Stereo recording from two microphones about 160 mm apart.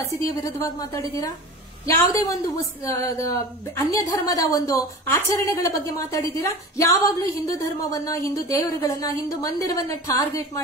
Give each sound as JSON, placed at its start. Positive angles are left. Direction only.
{"t": 0.0, "sound": "a woman's voice", "side_deg": 20}